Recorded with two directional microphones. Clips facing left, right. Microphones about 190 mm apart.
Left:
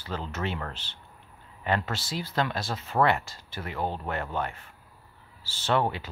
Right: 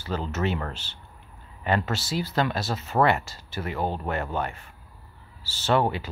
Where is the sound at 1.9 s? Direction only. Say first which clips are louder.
Right 3 dB; 5° right (ahead or behind).